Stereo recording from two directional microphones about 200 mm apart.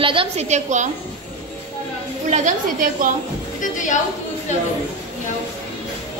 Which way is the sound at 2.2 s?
35° right (ahead or behind).